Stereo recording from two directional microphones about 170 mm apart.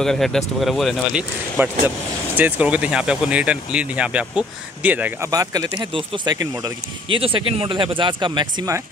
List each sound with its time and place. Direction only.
0.0 s speech: 5° left (ahead or behind)
5.3 s speech: 20° right (ahead or behind)